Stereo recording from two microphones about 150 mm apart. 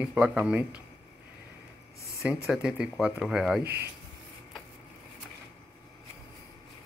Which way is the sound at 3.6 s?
15° right (ahead or behind).